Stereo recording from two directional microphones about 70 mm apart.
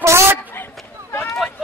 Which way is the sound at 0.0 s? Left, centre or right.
Right.